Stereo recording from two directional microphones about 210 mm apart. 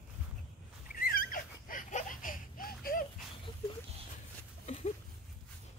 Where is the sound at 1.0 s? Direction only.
45° left (ahead or behind).